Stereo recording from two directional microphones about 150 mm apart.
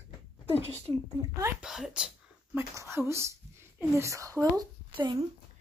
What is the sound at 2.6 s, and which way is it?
Speech, 20° right (ahead or behind).